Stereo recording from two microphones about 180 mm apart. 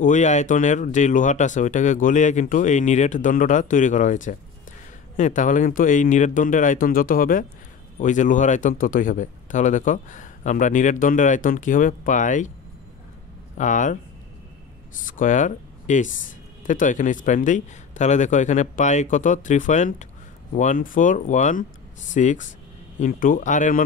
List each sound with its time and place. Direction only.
0.0 s speech: 40° left (ahead or behind)
13.6 s speech: 45° left (ahead or behind)
15.0 s speech: 45° left (ahead or behind)